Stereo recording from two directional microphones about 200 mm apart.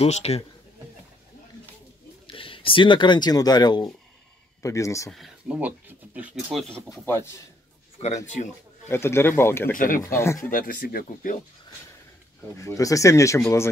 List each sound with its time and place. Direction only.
0.0 s a man's voice: 30° left (ahead or behind)
2.2 s speech: 25° left (ahead or behind)
5.1 s speech: 5° right (ahead or behind)
6.7 s speech: 15° left (ahead or behind)
8.0 s speech: 30° left (ahead or behind)
8.8 s speech: 10° left (ahead or behind)
9.8 s speech: 45° left (ahead or behind)
10.0 s speech: 15° left (ahead or behind)
10.5 s speech: 45° left (ahead or behind)
12.5 s speech: 15° left (ahead or behind)